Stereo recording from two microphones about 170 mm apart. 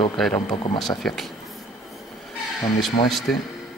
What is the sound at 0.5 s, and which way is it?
Speech, 25° left (ahead or behind).